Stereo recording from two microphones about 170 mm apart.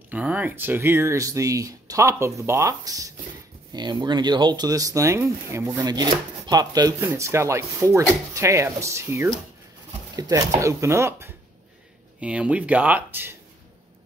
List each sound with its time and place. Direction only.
0.1 s speech: 10° right (ahead or behind)